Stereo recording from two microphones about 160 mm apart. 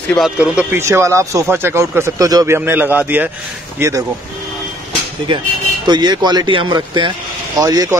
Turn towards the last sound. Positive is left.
turn(degrees=-25)  # may be behind; listen again after turning